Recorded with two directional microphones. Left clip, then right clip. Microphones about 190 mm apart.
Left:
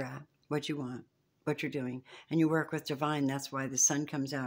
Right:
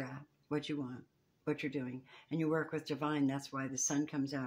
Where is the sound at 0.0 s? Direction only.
60° left (ahead or behind).